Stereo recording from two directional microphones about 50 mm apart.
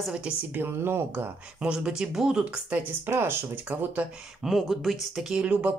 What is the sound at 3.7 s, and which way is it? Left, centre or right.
Speech, right.